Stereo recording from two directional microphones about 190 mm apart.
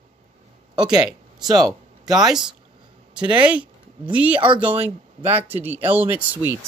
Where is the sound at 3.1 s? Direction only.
5° right (ahead or behind).